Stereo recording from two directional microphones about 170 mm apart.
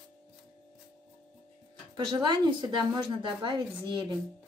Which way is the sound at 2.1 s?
25° right (ahead or behind).